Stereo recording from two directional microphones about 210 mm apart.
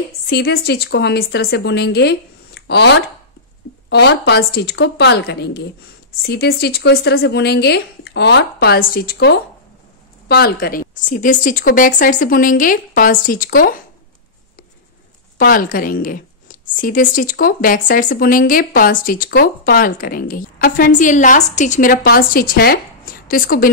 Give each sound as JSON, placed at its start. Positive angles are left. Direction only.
{"t": 0.3, "sound": "a woman's voice", "side_deg": 50}
{"t": 15.3, "sound": "speech", "side_deg": 45}